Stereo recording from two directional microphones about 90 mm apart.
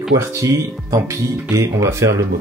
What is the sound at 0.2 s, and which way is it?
Speech, 35° right (ahead or behind).